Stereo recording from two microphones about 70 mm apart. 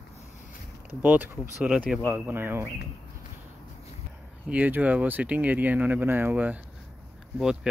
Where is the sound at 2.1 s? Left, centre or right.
Right.